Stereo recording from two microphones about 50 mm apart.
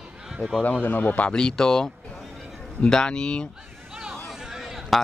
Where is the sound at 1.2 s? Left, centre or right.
Centre.